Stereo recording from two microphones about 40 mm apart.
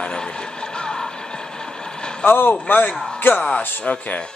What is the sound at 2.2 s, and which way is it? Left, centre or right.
Speech, left.